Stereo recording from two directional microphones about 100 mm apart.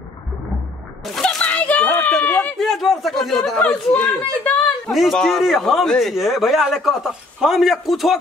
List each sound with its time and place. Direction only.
1.0 s a sound: centre (ahead or behind)
1.4 s children playing: 15° left (ahead or behind)
2.6 s a man's voice: centre (ahead or behind)
3.5 s speech: 15° left (ahead or behind)
4.9 s a man's voice: centre (ahead or behind)